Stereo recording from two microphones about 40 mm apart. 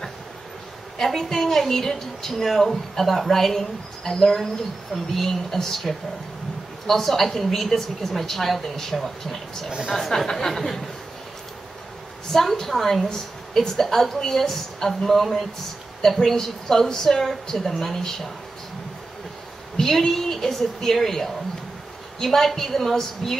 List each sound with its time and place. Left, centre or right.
0.9 s a woman's voice: centre
9.7 s speech: right
9.9 s a woman's voice: centre
12.3 s a woman's voice: centre
19.8 s a woman's voice: centre